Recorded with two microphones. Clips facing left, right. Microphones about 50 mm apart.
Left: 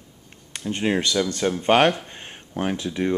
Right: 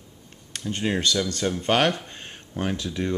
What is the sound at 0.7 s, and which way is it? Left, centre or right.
Speech, left.